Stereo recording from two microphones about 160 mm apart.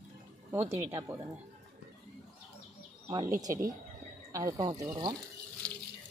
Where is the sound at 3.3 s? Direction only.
20° right (ahead or behind).